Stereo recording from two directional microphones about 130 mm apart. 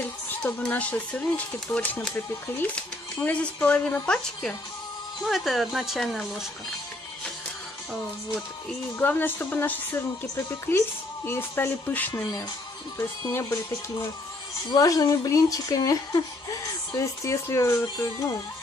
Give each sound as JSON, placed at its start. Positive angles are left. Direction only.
{"t": 0.3, "sound": "speech", "side_deg": 10}
{"t": 8.9, "sound": "a woman's voice", "side_deg": 15}
{"t": 13.3, "sound": "a woman's voice", "side_deg": 20}